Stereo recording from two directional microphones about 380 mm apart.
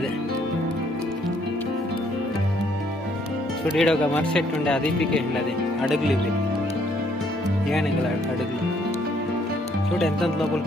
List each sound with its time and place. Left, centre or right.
3.7 s speech: centre
9.9 s speech: centre